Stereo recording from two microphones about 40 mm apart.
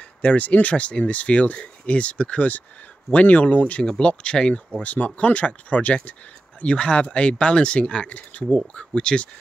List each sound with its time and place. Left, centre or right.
0.2 s speech: left
4.8 s speech: left
6.6 s speech: left
8.5 s speech: left